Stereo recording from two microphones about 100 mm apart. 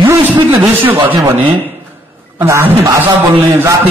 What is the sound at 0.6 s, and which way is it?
Speech, 20° right (ahead or behind).